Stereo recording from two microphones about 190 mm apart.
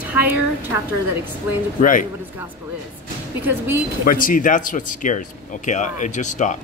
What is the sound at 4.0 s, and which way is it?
Speech, 50° left (ahead or behind).